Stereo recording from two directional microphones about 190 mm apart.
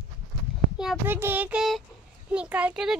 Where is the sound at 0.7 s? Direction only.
5° right (ahead or behind).